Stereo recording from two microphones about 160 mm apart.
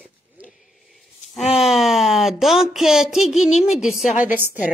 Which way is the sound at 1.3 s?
Centre (ahead or behind).